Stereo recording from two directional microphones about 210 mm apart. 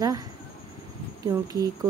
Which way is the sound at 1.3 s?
15° right (ahead or behind).